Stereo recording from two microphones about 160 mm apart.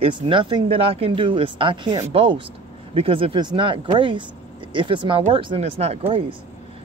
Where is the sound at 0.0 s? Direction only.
30° right (ahead or behind).